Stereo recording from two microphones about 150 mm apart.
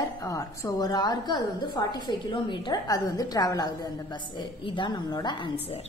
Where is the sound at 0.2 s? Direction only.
20° left (ahead or behind).